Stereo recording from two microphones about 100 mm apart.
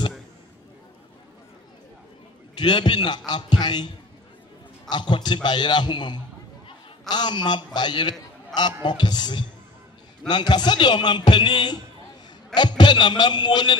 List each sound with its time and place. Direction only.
2.5 s a man's voice: 45° left (ahead or behind)
8.5 s speech: 5° left (ahead or behind)
8.8 s a man's voice: 45° left (ahead or behind)